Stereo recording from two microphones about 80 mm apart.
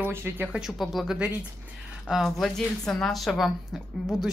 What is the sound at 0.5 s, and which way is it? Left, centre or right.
A woman's voice, centre.